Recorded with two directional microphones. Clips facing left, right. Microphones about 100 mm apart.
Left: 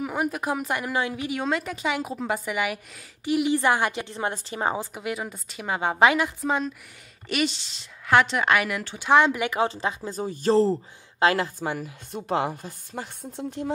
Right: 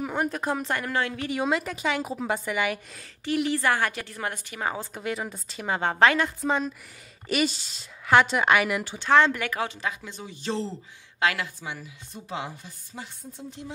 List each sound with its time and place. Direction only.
0.0 s a woman's voice: 5° left (ahead or behind)
1.3 s a woman's voice: centre (ahead or behind); by 4.7 s 30° left (ahead or behind)
4.7 s a woman's voice: 10° left (ahead or behind)
9.0 s a woman's voice: 15° left (ahead or behind)
9.7 s speech: 30° left (ahead or behind); by 13.7 s 55° left (ahead or behind)